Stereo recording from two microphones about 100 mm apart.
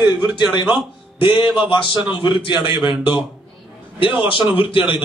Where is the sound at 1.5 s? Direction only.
55° left (ahead or behind).